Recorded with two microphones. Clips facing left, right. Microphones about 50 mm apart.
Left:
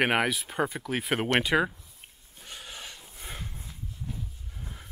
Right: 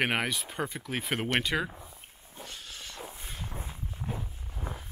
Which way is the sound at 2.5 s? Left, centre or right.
Centre.